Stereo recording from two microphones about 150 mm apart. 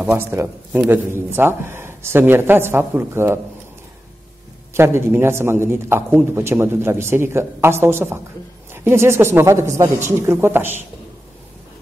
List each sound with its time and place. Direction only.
0.0 s a man's voice: 15° right (ahead or behind)
4.7 s a man's voice: 15° right (ahead or behind)